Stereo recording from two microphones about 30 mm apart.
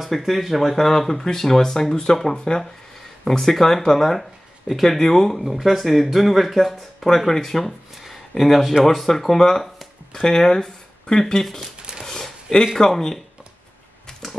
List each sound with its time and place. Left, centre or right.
0.2 s speech: centre
0.7 s speech: centre
2.3 s speech: left
3.3 s speech: centre
5.0 s speech: centre
5.4 s speech: centre
8.0 s a sound: centre
9.0 s speech: centre
10.2 s speech: left
12.0 s a sound: centre
12.7 s speech: centre